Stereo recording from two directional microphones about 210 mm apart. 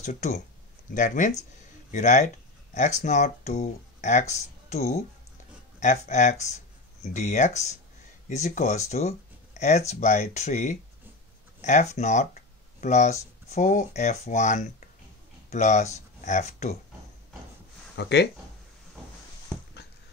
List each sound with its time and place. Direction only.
0.0 s speech: 35° left (ahead or behind)
17.9 s speech: 55° left (ahead or behind)